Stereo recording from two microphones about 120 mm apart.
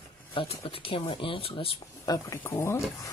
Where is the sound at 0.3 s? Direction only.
50° left (ahead or behind).